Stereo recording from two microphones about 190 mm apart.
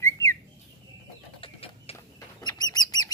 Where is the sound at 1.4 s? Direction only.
30° left (ahead or behind).